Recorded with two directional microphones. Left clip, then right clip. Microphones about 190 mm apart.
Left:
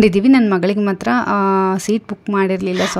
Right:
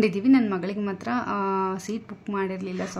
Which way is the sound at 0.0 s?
45° left (ahead or behind).